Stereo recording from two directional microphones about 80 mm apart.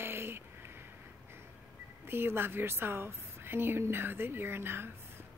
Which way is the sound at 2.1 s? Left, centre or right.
Right.